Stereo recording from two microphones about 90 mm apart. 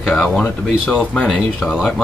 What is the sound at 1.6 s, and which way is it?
Speech, 5° right (ahead or behind).